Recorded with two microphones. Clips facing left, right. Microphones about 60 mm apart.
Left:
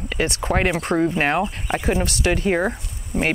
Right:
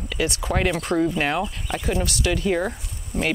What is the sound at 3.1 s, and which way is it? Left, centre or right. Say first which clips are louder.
Speech: left 3 dB; centre.